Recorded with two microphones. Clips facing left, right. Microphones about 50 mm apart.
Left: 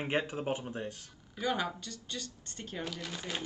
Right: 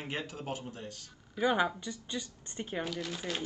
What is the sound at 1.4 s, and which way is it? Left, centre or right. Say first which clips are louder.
Speech: right 4 dB; right.